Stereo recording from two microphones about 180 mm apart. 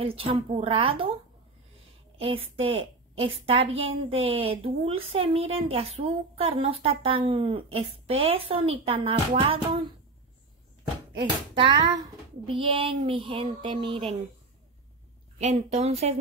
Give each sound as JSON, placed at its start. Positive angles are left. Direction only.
{"t": 0.0, "sound": "a woman's voice", "side_deg": -30}
{"t": 2.1, "sound": "a woman's voice", "side_deg": -30}
{"t": 11.1, "sound": "speech", "side_deg": -30}
{"t": 15.3, "sound": "a woman's voice", "side_deg": -40}